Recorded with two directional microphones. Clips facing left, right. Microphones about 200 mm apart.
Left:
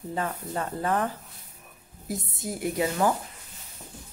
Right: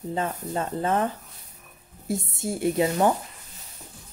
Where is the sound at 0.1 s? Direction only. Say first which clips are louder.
Right 2 dB; 25° right (ahead or behind).